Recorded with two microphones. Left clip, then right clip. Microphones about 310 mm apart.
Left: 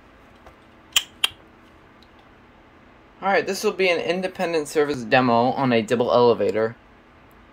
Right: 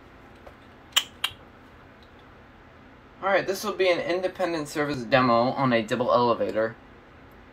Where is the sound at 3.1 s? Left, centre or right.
Left.